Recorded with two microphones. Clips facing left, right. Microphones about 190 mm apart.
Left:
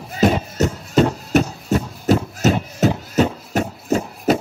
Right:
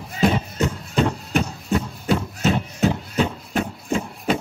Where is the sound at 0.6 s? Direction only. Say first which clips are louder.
Left 6 dB; 40° left (ahead or behind).